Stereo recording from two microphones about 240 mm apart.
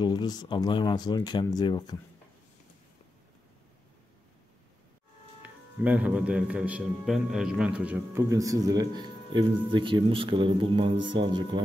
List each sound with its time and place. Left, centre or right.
0.0 s speech: centre
5.4 s speech: centre